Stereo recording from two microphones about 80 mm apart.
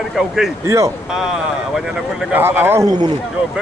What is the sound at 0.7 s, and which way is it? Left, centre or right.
Speech, right.